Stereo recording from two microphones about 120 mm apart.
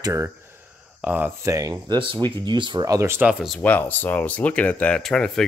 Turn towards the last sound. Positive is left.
turn(degrees=5)  # may be behind; listen again after turning